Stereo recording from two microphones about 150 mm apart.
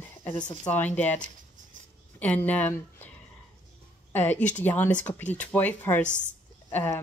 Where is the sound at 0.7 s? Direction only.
10° left (ahead or behind).